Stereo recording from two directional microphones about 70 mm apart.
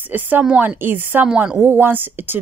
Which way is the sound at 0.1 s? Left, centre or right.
Right.